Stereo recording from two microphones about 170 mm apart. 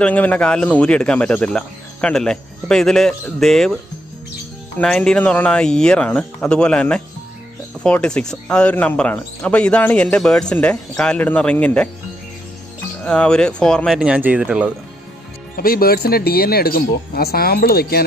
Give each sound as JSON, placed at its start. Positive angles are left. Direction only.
{"t": 0.0, "sound": "speech", "side_deg": 10}
{"t": 13.0, "sound": "speech", "side_deg": 5}
{"t": 15.5, "sound": "speech", "side_deg": 60}